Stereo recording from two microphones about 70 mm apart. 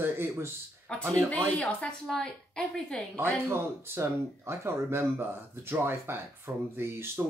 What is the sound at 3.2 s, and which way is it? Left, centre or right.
Speech, right.